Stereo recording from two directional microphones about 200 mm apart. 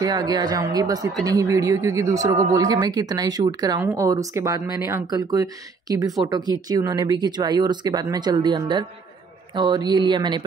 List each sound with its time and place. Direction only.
0.0 s speech: 20° right (ahead or behind)